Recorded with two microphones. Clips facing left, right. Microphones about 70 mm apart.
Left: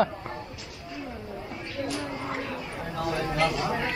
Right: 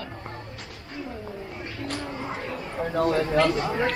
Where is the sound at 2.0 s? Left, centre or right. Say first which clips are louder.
Even; centre.